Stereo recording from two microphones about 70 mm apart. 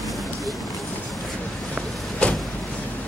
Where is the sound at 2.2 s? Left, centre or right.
Centre.